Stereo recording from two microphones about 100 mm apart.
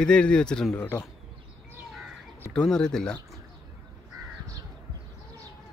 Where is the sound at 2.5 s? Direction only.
5° left (ahead or behind).